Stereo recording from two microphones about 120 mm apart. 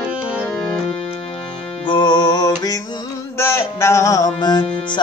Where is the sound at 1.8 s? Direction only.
40° left (ahead or behind).